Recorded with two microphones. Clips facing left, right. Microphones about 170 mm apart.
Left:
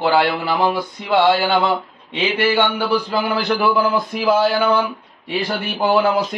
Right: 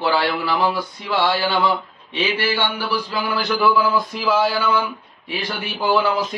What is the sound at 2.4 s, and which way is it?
A man's voice, 55° left (ahead or behind).